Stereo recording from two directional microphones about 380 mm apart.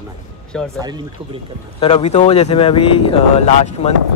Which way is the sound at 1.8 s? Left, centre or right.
Centre.